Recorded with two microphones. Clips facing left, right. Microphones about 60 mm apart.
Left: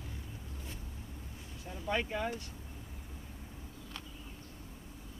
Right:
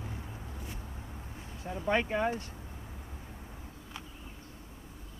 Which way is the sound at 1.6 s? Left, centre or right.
Right.